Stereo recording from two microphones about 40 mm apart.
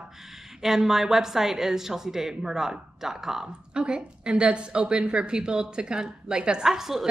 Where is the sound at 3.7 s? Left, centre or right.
Right.